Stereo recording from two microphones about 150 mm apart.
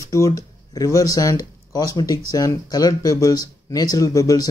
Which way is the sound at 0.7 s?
20° left (ahead or behind).